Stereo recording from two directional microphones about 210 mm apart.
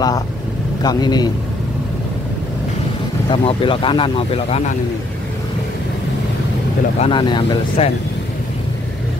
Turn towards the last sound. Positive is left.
turn(degrees=20)  # may be behind; listen again after turning